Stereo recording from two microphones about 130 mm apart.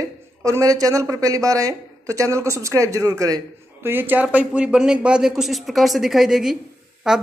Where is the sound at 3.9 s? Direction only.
15° right (ahead or behind).